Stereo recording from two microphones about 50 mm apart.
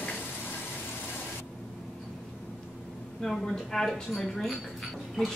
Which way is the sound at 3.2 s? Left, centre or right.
Centre.